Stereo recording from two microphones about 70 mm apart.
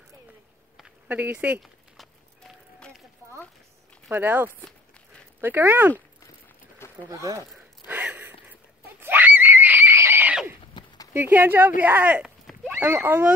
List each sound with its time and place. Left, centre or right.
1.0 s speech: right
1.6 s a sound: centre
3.2 s a sound: right
4.1 s speech: right
7.1 s speech: right
7.8 s gasp: right
9.0 s screaming: right
10.8 s clip-clop: left
11.1 s speech: right